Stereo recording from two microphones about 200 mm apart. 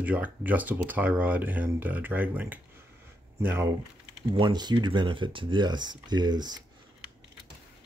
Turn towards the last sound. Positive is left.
turn(degrees=-20)  # may be behind; listen again after turning